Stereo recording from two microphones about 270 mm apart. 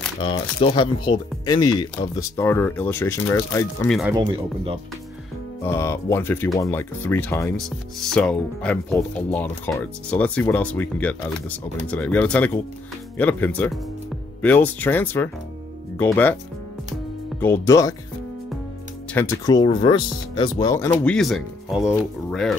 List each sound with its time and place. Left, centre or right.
0.2 s speech: centre
4.2 s speech: centre
5.6 s speech: centre
17.4 s speech: centre
19.1 s speech: centre